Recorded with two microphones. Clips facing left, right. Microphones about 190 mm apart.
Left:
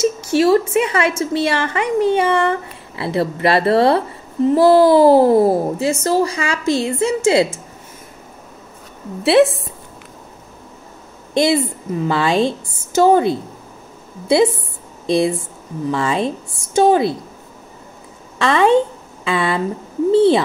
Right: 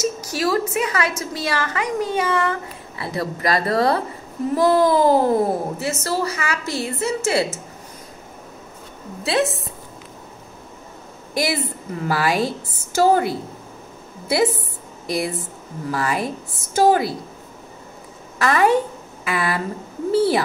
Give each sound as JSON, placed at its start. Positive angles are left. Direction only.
{"t": 0.0, "sound": "a child's voice", "side_deg": 30}
{"t": 9.2, "sound": "a woman's voice", "side_deg": 30}
{"t": 11.3, "sound": "a child's voice", "side_deg": 25}
{"t": 18.4, "sound": "a child's voice", "side_deg": 25}